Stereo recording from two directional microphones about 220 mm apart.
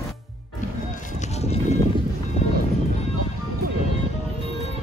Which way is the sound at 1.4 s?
30° left (ahead or behind).